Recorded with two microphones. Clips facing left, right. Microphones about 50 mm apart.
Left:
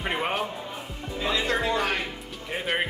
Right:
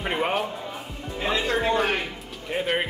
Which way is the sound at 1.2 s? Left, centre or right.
Right.